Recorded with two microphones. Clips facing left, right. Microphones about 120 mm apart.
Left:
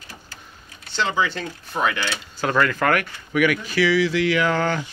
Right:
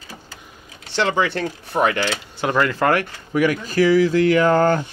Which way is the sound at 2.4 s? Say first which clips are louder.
Right 2 dB; 20° right (ahead or behind).